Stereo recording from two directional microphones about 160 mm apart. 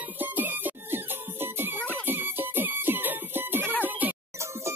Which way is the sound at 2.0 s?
10° right (ahead or behind).